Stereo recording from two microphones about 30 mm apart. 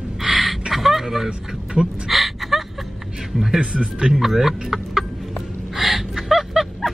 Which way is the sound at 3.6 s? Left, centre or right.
Right.